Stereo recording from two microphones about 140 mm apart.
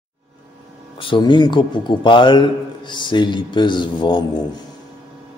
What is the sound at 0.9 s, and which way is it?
A man's voice, 35° left (ahead or behind).